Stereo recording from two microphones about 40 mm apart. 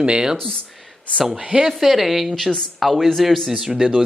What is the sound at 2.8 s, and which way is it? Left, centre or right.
Speech, centre.